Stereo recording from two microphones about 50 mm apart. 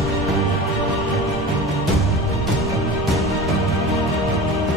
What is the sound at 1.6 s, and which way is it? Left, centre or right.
Music, centre.